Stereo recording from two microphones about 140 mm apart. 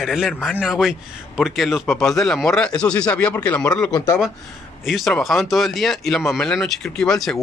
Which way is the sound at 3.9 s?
30° left (ahead or behind).